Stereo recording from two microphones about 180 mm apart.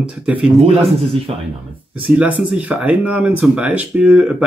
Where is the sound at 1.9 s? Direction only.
5° right (ahead or behind).